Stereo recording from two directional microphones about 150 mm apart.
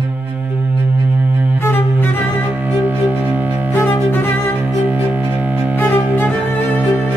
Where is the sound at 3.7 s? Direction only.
15° left (ahead or behind).